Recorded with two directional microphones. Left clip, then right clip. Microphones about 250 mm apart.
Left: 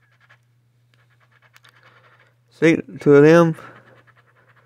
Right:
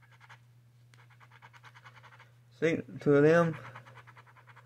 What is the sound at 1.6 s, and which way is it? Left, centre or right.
Pant, centre.